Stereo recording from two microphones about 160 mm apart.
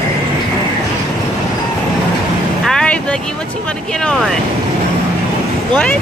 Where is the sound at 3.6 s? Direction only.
5° left (ahead or behind).